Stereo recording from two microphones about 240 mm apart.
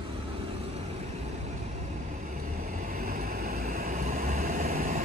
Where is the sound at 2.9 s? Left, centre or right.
Right.